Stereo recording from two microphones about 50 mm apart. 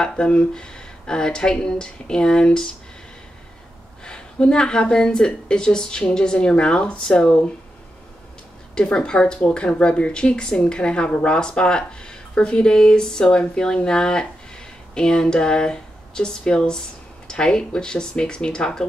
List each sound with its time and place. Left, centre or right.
0.0 s speech: centre
4.0 s speech: centre
8.7 s speech: centre